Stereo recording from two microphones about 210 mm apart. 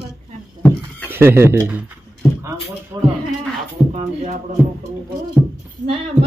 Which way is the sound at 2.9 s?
15° right (ahead or behind).